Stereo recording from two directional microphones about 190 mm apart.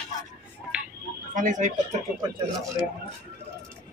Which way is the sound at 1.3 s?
40° right (ahead or behind).